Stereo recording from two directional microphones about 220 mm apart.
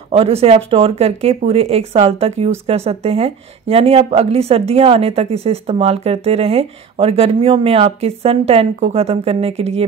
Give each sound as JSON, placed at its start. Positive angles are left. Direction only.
{"t": 0.1, "sound": "a woman's voice", "side_deg": -25}